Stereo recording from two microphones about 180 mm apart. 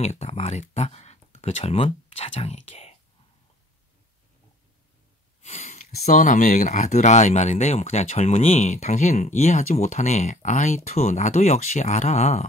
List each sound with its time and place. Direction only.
0.0 s speech: 35° left (ahead or behind)
5.4 s speech: 40° left (ahead or behind)